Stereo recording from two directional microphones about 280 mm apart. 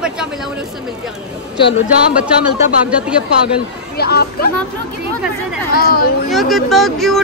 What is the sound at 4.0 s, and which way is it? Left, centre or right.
Speech, left.